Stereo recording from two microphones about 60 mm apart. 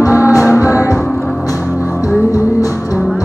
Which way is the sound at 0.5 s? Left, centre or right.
Right.